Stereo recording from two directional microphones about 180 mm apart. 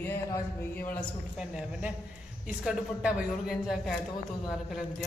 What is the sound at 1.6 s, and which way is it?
A woman's voice, 5° right (ahead or behind).